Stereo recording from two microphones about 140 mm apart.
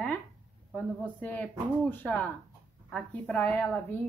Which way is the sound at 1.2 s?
10° left (ahead or behind).